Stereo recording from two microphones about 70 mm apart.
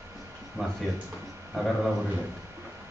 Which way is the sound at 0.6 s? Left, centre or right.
Right.